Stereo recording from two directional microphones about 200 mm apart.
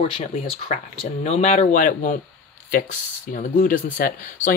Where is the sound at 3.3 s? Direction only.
45° left (ahead or behind).